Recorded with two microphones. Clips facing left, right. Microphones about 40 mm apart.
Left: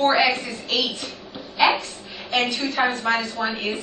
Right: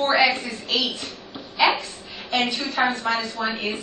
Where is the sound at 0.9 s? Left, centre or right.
Centre.